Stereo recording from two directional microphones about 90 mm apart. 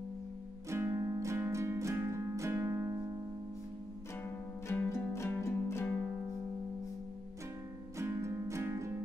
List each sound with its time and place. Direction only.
0.7 s music: 35° right (ahead or behind)
4.6 s music: 30° left (ahead or behind)
8.0 s music: 30° right (ahead or behind)